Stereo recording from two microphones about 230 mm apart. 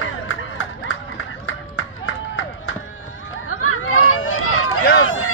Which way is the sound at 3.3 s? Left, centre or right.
Left.